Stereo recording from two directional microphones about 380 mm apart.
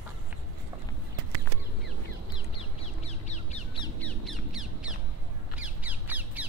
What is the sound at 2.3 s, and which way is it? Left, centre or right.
Crow, centre.